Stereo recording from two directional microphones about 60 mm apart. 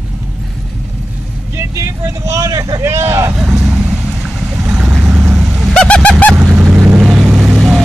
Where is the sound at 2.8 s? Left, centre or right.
Right.